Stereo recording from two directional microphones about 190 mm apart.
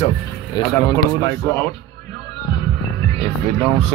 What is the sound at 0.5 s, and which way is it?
Speech, 20° left (ahead or behind).